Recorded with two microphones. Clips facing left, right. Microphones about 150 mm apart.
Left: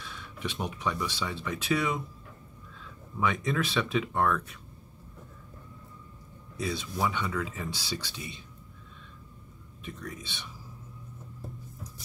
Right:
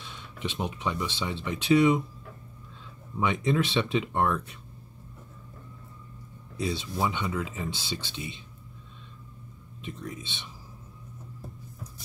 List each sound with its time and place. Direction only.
0.0 s speech: 20° right (ahead or behind)
6.5 s speech: 25° right (ahead or behind)
9.8 s speech: 25° right (ahead or behind)